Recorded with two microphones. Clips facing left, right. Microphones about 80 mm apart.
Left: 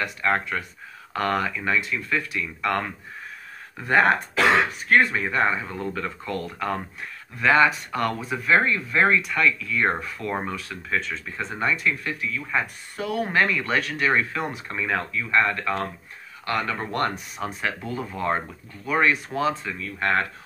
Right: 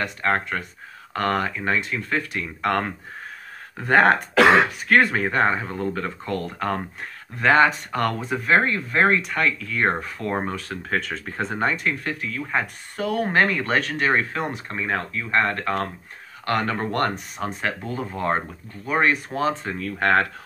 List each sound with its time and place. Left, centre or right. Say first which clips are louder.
0.0 s speech: right 1 dB; right
10.9 s speech: right 1 dB; right
17.6 s speech: even; right
19.8 s speech: right 5 dB; right